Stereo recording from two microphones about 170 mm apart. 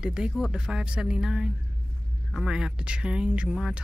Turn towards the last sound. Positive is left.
turn(degrees=-5)  # may be behind; listen again after turning